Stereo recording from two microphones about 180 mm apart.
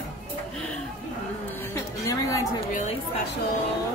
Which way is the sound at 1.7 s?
15° left (ahead or behind).